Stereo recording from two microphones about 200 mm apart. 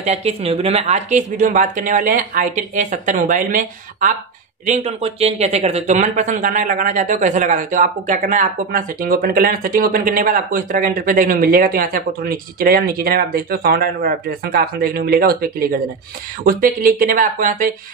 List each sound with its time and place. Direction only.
0.0 s speech: 30° right (ahead or behind)